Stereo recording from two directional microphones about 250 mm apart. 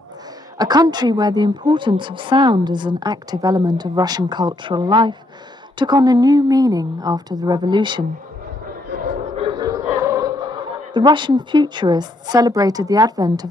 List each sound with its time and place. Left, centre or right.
0.6 s a woman's voice: centre
9.4 s a man's voice: centre